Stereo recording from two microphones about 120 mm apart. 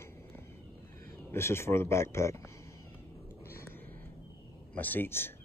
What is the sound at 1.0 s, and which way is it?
Speech, 20° left (ahead or behind).